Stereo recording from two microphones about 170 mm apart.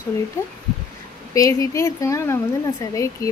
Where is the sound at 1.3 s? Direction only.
20° left (ahead or behind).